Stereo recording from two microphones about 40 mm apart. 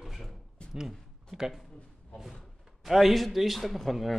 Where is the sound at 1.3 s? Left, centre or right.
Centre.